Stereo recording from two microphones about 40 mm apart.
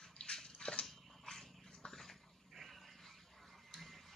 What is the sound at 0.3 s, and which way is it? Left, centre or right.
Dog, centre.